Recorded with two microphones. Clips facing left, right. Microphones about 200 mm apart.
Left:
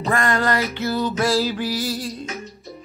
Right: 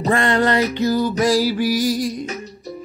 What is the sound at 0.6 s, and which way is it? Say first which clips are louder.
Music: right 5 dB; 15° right (ahead or behind).